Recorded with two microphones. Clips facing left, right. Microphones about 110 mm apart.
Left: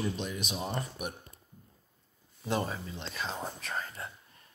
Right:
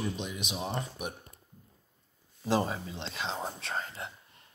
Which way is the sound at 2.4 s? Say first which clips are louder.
Right 3 dB; 30° right (ahead or behind).